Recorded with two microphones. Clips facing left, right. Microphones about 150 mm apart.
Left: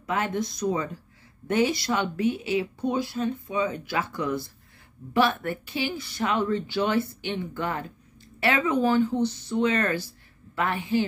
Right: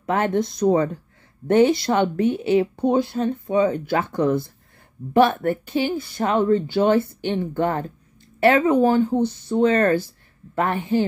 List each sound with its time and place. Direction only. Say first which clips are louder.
0.0 s speech: right 6 dB; 55° right (ahead or behind)